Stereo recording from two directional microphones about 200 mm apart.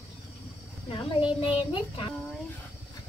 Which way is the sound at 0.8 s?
30° left (ahead or behind).